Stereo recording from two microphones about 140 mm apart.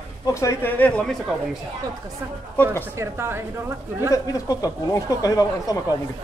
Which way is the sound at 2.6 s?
20° right (ahead or behind).